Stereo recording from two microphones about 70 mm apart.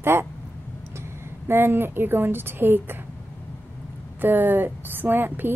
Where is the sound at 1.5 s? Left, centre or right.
Right.